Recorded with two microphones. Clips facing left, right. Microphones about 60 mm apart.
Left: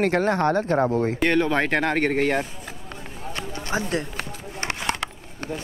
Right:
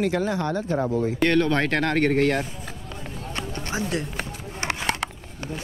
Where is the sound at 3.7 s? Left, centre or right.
Left.